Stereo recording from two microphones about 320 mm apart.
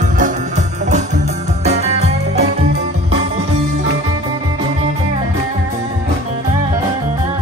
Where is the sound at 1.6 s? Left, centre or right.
Centre.